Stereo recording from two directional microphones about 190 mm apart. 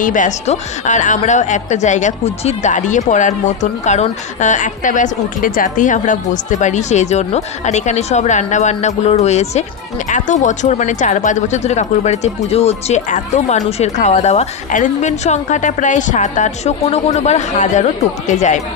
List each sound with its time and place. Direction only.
0.0 s speech: 40° left (ahead or behind)